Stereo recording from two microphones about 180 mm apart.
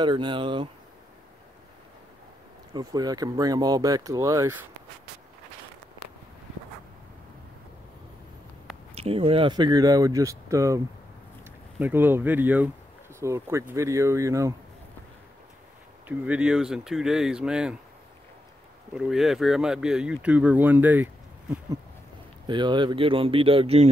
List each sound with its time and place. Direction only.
0.0 s speech: 25° right (ahead or behind)
2.7 s speech: 20° right (ahead or behind)
8.9 s speech: 30° right (ahead or behind); by 10.8 s 15° right (ahead or behind)
11.8 s speech: 10° right (ahead or behind)
16.1 s speech: 10° right (ahead or behind)
18.9 s speech: centre (ahead or behind)
22.5 s speech: 25° right (ahead or behind)